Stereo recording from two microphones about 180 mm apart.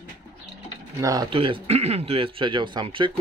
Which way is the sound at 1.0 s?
20° right (ahead or behind).